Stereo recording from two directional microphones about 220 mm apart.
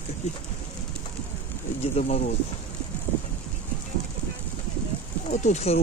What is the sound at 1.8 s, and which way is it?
Speech, 30° left (ahead or behind).